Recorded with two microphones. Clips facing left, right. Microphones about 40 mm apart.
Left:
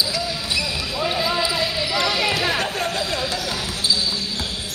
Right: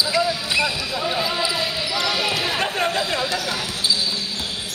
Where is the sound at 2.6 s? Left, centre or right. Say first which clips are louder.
Right 2 dB; right.